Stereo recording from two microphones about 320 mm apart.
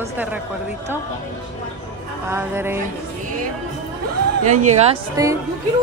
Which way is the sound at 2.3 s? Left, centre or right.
Centre.